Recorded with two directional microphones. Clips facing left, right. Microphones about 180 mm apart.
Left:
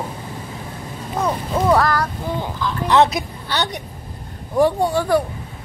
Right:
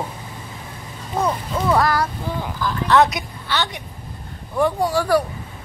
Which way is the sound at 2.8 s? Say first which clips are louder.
Left 1 dB; 25° left (ahead or behind).